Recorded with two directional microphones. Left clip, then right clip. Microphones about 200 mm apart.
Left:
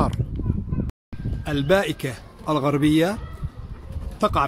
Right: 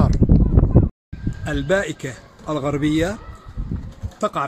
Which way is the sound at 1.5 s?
10° left (ahead or behind).